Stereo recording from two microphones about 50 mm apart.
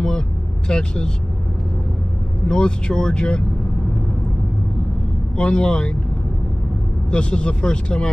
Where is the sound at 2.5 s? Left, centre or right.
Centre.